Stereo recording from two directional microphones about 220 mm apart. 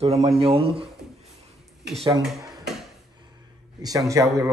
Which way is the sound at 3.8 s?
15° right (ahead or behind).